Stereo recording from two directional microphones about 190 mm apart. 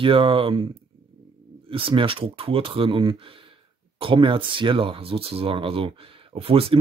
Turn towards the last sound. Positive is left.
turn(degrees=-30)  # may be behind; listen again after turning